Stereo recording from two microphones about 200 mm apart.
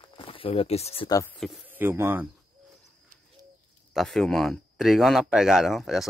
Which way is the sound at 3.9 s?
Centre (ahead or behind).